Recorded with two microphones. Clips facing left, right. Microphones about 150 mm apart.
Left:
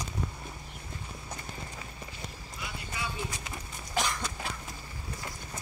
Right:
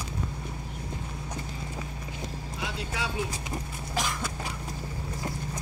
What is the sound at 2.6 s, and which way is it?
Clip-clop, 90° right.